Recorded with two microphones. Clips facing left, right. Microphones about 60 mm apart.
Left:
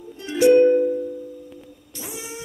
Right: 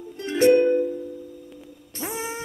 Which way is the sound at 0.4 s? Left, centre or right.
Right.